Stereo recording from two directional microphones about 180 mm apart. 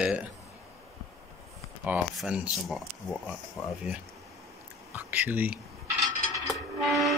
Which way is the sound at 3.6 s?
15° left (ahead or behind).